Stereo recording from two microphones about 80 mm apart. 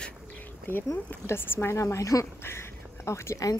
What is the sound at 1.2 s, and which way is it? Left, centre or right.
A woman's voice, left.